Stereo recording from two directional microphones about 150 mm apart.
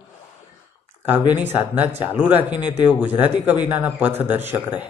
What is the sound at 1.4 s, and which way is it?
Speech, 15° right (ahead or behind).